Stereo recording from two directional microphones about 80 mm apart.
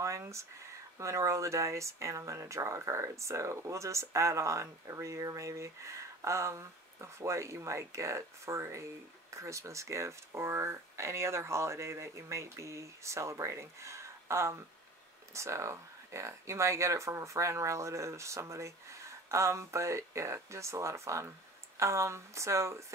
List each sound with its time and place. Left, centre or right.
0.0 s speech: right